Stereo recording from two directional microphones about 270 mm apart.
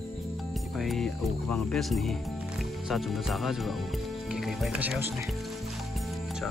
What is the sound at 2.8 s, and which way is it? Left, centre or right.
Speech, centre.